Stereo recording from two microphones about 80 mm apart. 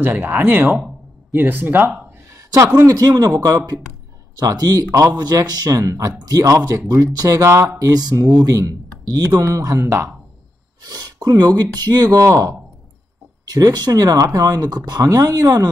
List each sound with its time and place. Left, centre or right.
0.0 s speech: right
2.2 s a sound: right
2.9 s speech: right
7.8 s speech: right
10.8 s speech: right